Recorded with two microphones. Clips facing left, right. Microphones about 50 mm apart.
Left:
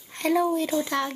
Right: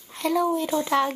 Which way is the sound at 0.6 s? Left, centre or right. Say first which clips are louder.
Right 3 dB; centre.